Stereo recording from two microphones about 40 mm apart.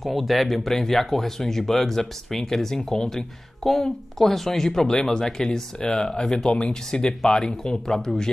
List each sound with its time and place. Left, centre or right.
0.0 s speech: centre